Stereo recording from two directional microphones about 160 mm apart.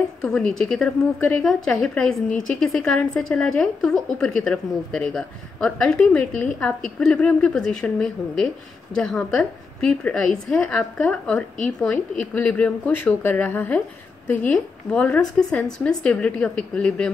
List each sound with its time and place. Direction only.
0.2 s a woman's voice: 5° left (ahead or behind)